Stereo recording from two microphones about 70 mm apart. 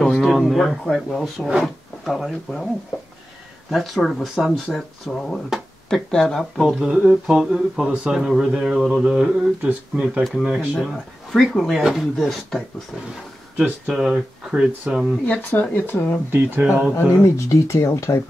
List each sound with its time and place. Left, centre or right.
0.2 s speech: centre
3.7 s speech: centre
6.8 s speech: centre
11.3 s speech: centre
13.7 s speech: centre
15.2 s speech: left
15.9 s speech: left
16.3 s speech: right
16.9 s speech: left